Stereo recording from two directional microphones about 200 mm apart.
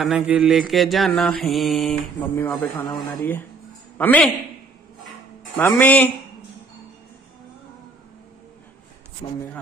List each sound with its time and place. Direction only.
0.0 s mantra: 5° right (ahead or behind)
4.0 s speech: 10° left (ahead or behind)
5.6 s speech: 10° left (ahead or behind)
9.2 s speech: 25° left (ahead or behind)